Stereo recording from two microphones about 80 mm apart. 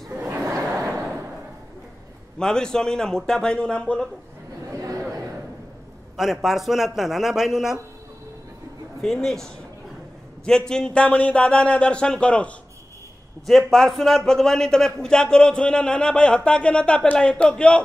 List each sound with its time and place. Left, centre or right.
0.5 s a sound: right
2.3 s a man's voice: centre
4.6 s chatter: right
6.1 s a man's voice: centre
9.0 s a man's voice: centre